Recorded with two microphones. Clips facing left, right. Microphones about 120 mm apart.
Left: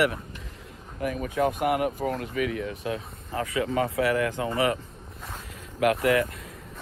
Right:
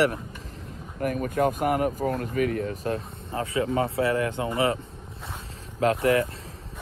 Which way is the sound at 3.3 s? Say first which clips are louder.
Right 1 dB; 25° right (ahead or behind).